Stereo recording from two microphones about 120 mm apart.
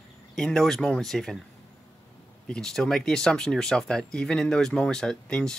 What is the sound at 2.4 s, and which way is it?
Speech, 5° left (ahead or behind).